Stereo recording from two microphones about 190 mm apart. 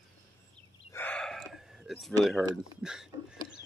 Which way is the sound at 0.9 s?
10° left (ahead or behind).